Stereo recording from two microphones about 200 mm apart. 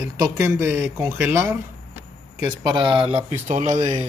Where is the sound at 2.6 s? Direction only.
20° right (ahead or behind).